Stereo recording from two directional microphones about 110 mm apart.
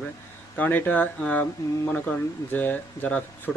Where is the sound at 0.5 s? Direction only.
15° left (ahead or behind).